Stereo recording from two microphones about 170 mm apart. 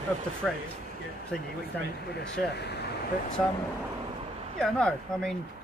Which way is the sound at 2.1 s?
75° left (ahead or behind).